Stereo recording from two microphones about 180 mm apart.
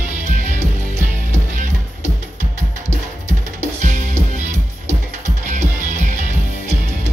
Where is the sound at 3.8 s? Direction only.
45° right (ahead or behind).